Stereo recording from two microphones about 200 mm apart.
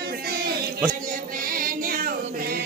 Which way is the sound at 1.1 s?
45° right (ahead or behind).